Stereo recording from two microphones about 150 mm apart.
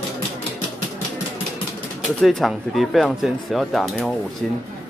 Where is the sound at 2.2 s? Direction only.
Centre (ahead or behind).